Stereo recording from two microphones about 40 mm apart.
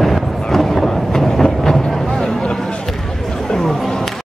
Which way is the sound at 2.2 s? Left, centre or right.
Centre.